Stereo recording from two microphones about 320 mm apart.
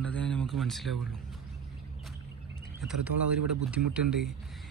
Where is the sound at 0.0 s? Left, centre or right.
Centre.